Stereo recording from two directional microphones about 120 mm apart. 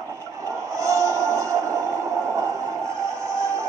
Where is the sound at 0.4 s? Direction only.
25° right (ahead or behind).